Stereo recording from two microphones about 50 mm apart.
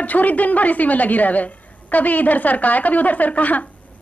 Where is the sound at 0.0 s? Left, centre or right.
Left.